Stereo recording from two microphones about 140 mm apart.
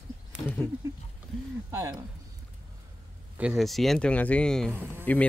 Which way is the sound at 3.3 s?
5° right (ahead or behind).